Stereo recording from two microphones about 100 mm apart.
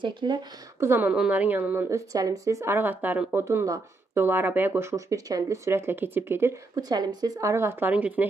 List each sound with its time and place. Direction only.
0.0 s speech: 50° right (ahead or behind)
0.7 s speech: 25° right (ahead or behind)
1.1 s speech: 10° right (ahead or behind)
6.7 s speech: 40° right (ahead or behind)
7.9 s speech: 15° right (ahead or behind)